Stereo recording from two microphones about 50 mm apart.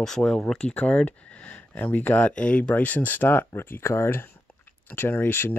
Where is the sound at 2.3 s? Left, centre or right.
Left.